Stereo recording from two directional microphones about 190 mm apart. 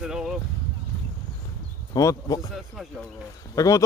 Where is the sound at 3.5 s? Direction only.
20° left (ahead or behind).